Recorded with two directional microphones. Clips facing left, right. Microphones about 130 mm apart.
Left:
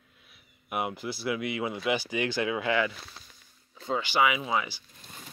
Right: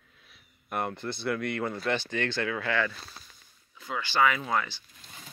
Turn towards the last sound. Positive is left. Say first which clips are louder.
# even
turn(degrees=10)  # may be behind; listen again after turning